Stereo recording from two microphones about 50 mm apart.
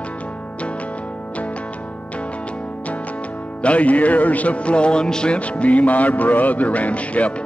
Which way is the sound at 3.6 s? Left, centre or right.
Left.